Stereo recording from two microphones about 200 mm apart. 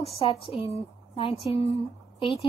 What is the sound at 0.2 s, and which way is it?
A woman's voice, 30° left (ahead or behind).